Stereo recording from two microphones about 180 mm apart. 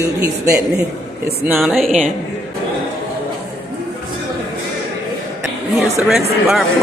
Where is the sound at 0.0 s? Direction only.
15° right (ahead or behind).